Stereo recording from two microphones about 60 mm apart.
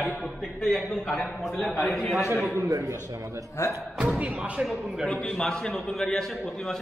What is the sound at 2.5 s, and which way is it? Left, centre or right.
Speech, right.